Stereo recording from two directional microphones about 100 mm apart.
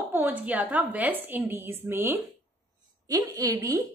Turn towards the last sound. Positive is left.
turn(degrees=-30)  # may be behind; listen again after turning